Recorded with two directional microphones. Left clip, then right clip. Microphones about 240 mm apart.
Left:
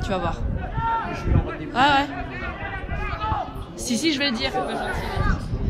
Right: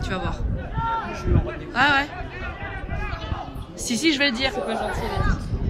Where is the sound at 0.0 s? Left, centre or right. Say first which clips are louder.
Left 3 dB; centre.